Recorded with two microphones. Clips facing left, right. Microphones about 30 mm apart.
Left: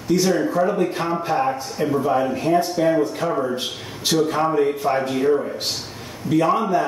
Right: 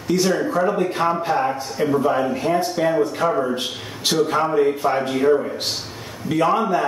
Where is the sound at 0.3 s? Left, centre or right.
Centre.